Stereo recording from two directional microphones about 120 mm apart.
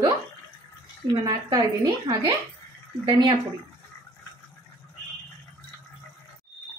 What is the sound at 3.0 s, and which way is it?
Speech, 40° right (ahead or behind).